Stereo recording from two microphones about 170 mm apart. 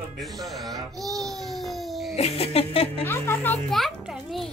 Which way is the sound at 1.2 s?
Centre (ahead or behind).